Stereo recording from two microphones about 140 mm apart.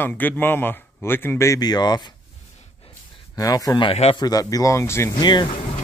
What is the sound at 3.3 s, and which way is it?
Speech, 25° left (ahead or behind).